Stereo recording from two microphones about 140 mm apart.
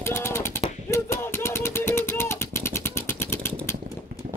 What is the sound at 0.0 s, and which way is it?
Machine gun, 20° left (ahead or behind).